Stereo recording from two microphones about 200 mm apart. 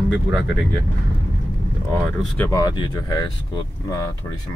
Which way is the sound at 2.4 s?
15° left (ahead or behind).